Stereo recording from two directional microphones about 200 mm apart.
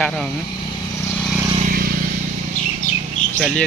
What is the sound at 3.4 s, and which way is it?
Speech, centre (ahead or behind).